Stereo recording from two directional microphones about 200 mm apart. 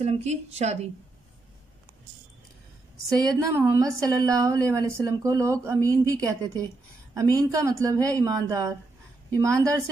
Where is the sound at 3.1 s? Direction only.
15° right (ahead or behind).